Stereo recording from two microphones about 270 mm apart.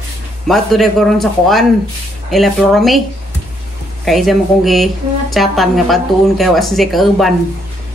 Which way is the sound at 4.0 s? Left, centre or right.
Centre.